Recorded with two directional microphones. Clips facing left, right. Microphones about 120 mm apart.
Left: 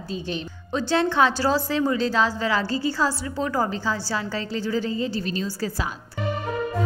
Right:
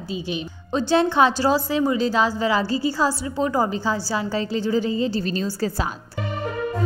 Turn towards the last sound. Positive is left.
turn(degrees=-30)  # may be behind; listen again after turning